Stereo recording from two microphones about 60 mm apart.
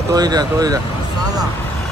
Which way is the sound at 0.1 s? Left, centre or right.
Right.